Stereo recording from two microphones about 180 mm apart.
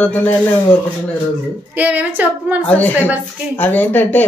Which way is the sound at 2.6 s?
10° left (ahead or behind).